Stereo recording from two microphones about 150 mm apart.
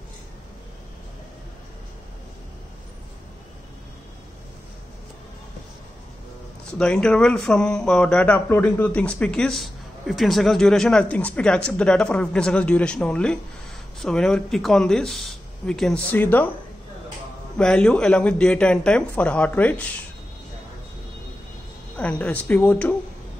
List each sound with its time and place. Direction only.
6.6 s speech: 5° left (ahead or behind)
17.6 s speech: 5° left (ahead or behind)
21.9 s speech: 10° left (ahead or behind)